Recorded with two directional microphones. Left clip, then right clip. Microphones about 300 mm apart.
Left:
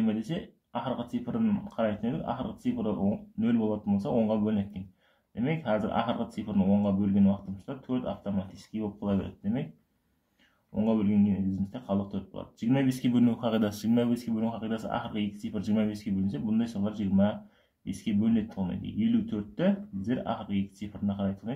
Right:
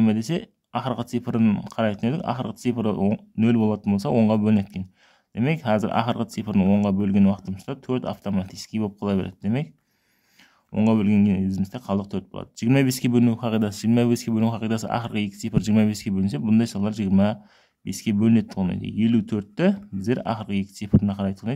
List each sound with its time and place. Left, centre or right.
0.0 s speech: right
10.7 s speech: right